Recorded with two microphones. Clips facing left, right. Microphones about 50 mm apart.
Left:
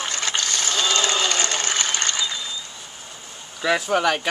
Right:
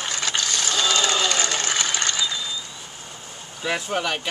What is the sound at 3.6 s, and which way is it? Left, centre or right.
Speech, left.